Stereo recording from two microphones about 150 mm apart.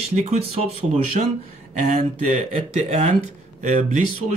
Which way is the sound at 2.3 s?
45° right (ahead or behind).